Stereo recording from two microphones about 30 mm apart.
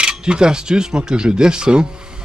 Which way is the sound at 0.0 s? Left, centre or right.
Right.